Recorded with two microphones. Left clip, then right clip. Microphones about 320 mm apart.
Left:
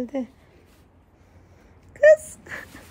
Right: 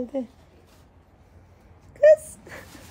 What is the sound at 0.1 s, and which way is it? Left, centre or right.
Speech, left.